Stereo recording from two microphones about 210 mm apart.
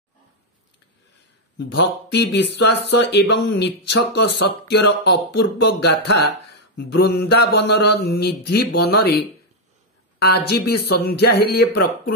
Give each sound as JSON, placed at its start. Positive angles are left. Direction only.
{"t": 2.3, "sound": "speech", "side_deg": 55}
{"t": 10.2, "sound": "speech", "side_deg": 50}